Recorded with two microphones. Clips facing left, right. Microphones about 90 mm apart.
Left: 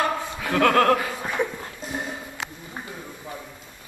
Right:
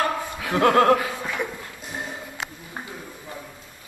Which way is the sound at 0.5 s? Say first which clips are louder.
Right 1 dB; 25° right (ahead or behind).